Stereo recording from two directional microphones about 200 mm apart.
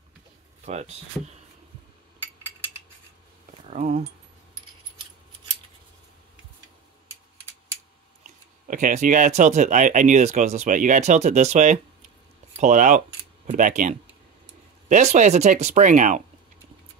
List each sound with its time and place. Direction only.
0.7 s speech: 35° right (ahead or behind)
3.6 s speech: 35° right (ahead or behind)
8.6 s speech: 40° right (ahead or behind)
15.1 s speech: 35° right (ahead or behind)